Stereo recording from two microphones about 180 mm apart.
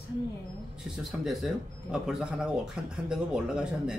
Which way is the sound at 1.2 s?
5° right (ahead or behind).